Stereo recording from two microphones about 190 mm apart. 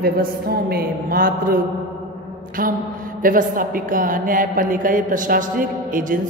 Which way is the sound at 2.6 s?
45° right (ahead or behind).